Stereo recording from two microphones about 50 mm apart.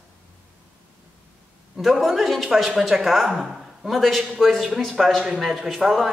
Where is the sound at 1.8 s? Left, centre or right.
Centre.